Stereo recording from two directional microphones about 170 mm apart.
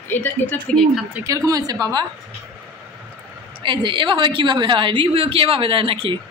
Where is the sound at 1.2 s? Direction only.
20° right (ahead or behind).